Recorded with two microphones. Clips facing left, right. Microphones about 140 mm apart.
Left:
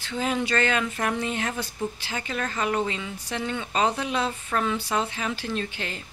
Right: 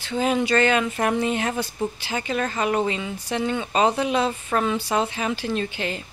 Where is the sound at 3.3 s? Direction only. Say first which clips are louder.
Right 5 dB; 15° right (ahead or behind).